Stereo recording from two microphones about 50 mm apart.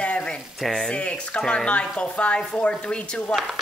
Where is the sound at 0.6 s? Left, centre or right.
Centre.